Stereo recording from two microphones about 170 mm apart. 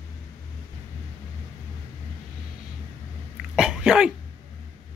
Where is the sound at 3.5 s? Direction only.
5° right (ahead or behind).